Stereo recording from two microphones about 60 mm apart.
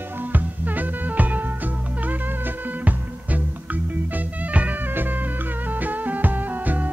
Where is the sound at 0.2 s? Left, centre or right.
Right.